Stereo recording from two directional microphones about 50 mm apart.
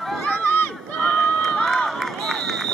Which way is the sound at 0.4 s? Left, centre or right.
Left.